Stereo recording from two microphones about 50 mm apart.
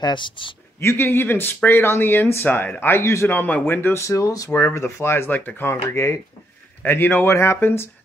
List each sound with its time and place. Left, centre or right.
0.7 s speech: left
2.4 s speech: left
2.8 s speech: left
3.3 s speech: left
3.9 s speech: left
4.5 s speech: left
4.7 s speech: left
5.6 s speech: left
5.9 s speech: left
6.9 s speech: left
7.3 s speech: left